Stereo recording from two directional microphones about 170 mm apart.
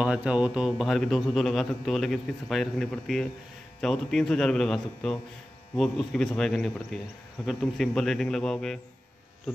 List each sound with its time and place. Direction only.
0.0 s speech: 5° right (ahead or behind)